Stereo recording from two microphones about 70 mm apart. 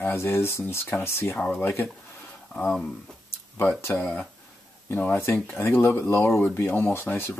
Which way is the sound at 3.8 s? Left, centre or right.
Left.